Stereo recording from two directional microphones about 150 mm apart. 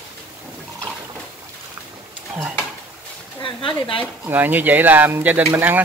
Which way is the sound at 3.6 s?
35° left (ahead or behind).